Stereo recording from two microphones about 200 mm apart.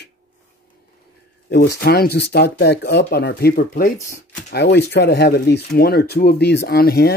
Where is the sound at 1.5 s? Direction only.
55° left (ahead or behind).